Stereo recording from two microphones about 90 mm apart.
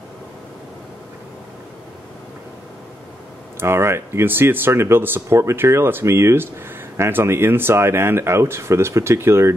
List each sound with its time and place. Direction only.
3.5 s speech: 30° right (ahead or behind)